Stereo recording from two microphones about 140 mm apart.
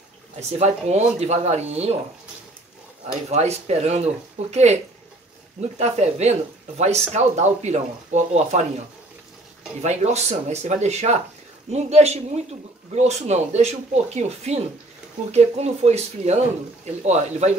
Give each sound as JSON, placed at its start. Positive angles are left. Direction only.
{"t": 0.4, "sound": "speech", "side_deg": -50}
{"t": 3.3, "sound": "speech", "side_deg": -50}
{"t": 5.8, "sound": "speech", "side_deg": -50}